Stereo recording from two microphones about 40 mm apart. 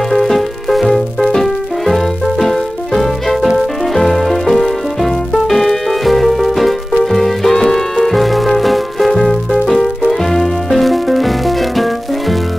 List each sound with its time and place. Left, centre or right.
0.1 s music: centre